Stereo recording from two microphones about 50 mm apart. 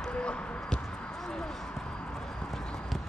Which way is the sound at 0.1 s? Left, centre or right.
Left.